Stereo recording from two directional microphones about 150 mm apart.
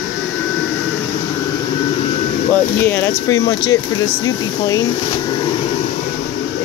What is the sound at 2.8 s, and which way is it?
Speech, 15° left (ahead or behind).